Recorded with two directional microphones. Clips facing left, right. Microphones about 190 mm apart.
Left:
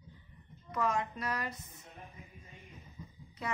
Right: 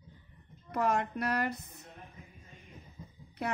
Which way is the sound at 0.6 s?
65° right (ahead or behind).